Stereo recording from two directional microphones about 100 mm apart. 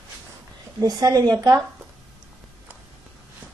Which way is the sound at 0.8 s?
40° right (ahead or behind).